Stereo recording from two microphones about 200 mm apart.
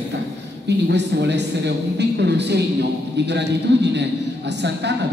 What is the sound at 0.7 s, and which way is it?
A man's voice, 60° right (ahead or behind).